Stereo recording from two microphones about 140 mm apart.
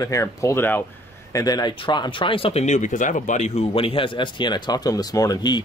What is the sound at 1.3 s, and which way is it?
Speech, 25° left (ahead or behind).